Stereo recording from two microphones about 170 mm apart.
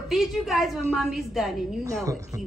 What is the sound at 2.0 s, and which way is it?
Speech, 20° right (ahead or behind).